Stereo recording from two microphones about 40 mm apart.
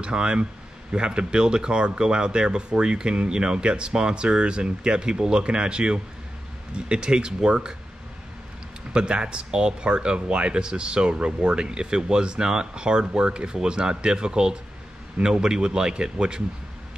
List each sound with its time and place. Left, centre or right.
0.0 s speech: right
8.9 s speech: right